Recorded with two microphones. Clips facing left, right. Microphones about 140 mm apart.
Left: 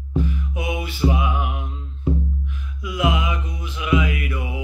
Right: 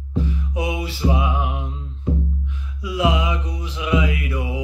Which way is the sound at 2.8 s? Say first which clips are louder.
Right 2 dB; 30° right (ahead or behind).